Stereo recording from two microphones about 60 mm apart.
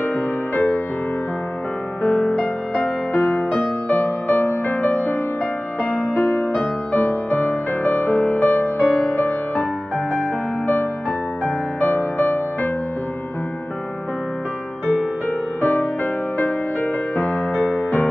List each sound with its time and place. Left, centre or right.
0.0 s music: left
2.0 s music: centre; by 8.7 s left
8.7 s music: left
11.8 s music: left
15.2 s music: left